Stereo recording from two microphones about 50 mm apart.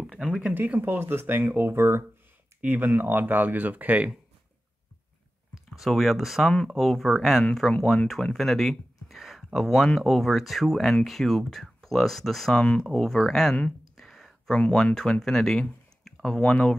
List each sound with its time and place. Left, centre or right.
0.0 s a sound: centre
0.6 s speech: right
2.6 s speech: right
5.9 s speech: centre
12.5 s speech: centre
13.9 s a sound: centre
14.5 s speech: centre
16.3 s speech: left